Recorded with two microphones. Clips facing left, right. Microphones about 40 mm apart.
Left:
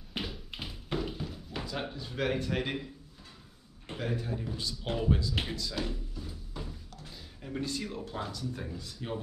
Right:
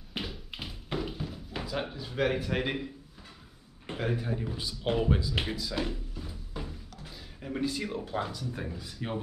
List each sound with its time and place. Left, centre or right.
0.1 s tap: centre
3.8 s speech: centre